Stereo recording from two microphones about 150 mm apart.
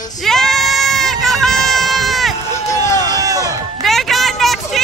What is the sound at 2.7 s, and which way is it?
Run, 20° left (ahead or behind).